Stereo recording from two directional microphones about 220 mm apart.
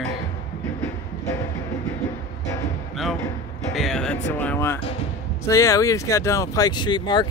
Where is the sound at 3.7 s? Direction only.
Centre (ahead or behind).